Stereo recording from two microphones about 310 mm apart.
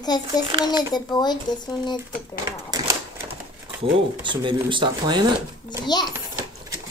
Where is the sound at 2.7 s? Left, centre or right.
Centre.